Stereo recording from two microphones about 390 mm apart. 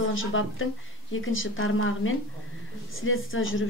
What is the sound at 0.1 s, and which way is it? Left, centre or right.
A woman's voice, left.